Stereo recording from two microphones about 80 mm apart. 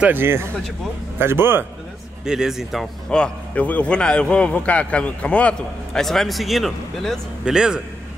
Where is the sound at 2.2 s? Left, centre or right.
Centre.